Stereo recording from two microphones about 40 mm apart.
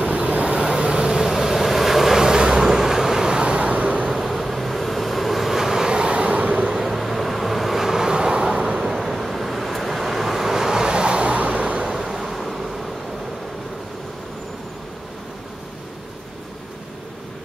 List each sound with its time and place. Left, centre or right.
0.0 s vehicle: right; by 2.2 s centre
2.2 s vehicle: centre
4.1 s vehicle: centre; by 6.8 s right
6.8 s vehicle: centre
9.0 s vehicle: centre